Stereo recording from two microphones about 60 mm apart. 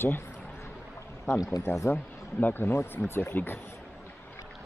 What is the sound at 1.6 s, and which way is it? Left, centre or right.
Speech, left.